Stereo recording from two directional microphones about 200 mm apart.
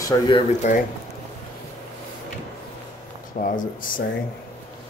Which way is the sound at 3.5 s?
45° left (ahead or behind).